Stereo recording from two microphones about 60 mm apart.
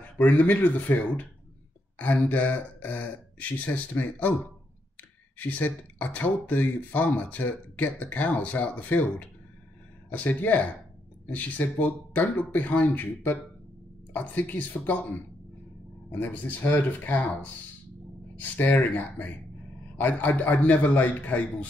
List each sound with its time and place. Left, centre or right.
0.0 s speech: left
2.2 s speech: left
5.4 s speech: left
16.1 s speech: left